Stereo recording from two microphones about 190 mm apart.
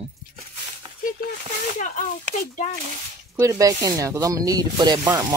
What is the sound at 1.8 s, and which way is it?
Speech, 40° left (ahead or behind).